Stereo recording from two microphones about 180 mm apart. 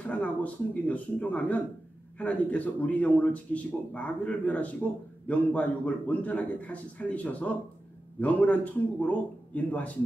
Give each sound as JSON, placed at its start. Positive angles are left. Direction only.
{"t": 0.0, "sound": "a man's voice", "side_deg": 10}